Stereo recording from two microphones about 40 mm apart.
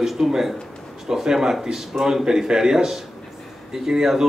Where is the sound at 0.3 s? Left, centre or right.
Centre.